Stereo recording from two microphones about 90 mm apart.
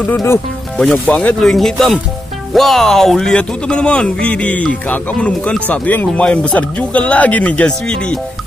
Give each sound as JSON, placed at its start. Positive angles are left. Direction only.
{"t": 0.7, "sound": "speech", "side_deg": 5}
{"t": 1.0, "sound": "speech", "side_deg": 15}
{"t": 1.4, "sound": "speech", "side_deg": 5}